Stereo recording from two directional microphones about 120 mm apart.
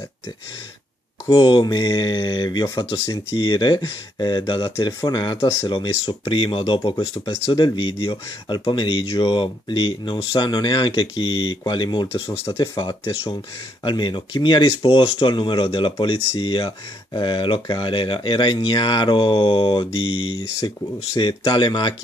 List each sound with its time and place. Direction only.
1.3 s speech: 45° left (ahead or behind)
5.4 s speech: 20° left (ahead or behind)
5.7 s speech: 45° left (ahead or behind)
13.1 s speech: 50° left (ahead or behind)